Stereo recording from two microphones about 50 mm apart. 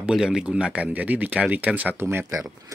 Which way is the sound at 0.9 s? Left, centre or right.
Right.